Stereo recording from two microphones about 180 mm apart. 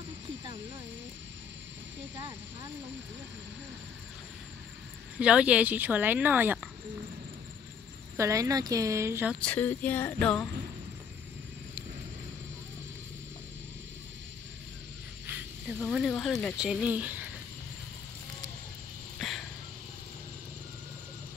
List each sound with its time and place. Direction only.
5.2 s a woman's voice: 5° right (ahead or behind)
8.2 s a woman's voice: 20° right (ahead or behind)
9.3 s speech: 5° left (ahead or behind)
15.2 s speech: 10° right (ahead or behind)
19.1 s a sound: centre (ahead or behind)